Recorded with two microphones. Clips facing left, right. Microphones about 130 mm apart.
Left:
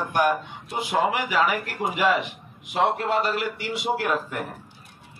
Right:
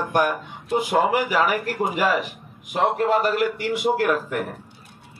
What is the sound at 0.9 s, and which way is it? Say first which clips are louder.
A man's voice: right 2 dB; 45° right (ahead or behind).